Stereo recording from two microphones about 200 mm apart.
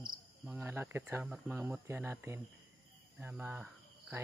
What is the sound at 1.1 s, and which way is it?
Speech, 10° right (ahead or behind).